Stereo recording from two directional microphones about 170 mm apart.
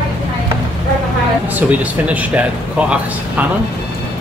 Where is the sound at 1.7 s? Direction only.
10° right (ahead or behind).